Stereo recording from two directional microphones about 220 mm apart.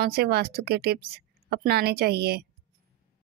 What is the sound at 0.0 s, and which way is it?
Speech, 45° right (ahead or behind).